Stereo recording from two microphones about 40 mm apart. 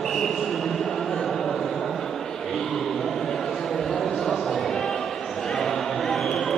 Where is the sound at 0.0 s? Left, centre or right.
Centre.